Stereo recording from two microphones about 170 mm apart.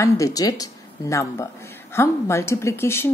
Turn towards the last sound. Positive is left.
turn(degrees=15)  # may be behind; listen again after turning